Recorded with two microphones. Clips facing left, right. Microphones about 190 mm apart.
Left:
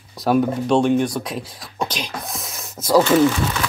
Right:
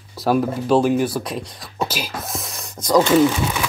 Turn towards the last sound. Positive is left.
turn(degrees=-10)  # may be behind; listen again after turning